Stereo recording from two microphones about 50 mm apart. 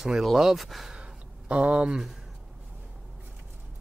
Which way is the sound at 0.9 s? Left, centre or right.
Right.